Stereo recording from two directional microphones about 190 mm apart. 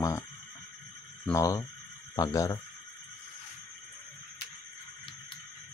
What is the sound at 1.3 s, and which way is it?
Speech, 15° left (ahead or behind).